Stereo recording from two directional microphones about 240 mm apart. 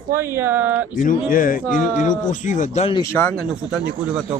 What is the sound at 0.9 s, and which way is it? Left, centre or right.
A man's voice, left.